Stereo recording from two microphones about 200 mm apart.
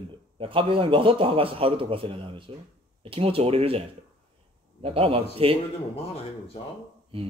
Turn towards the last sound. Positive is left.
turn(degrees=30)  # may be behind; listen again after turning